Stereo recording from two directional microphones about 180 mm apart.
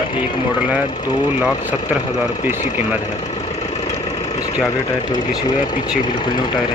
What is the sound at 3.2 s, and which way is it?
Vehicle, 35° left (ahead or behind).